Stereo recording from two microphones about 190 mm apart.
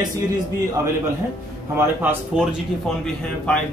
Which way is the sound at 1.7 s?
10° right (ahead or behind).